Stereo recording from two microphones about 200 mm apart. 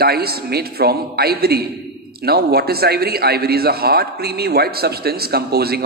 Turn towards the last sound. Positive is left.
turn(degrees=-50)  # may be behind; listen again after turning